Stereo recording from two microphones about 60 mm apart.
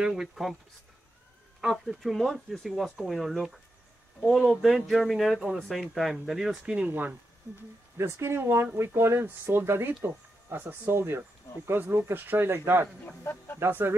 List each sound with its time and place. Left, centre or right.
0.0 s speech: centre
1.6 s speech: centre
7.5 s speech: right
13.2 s speech: left
13.6 s speech: right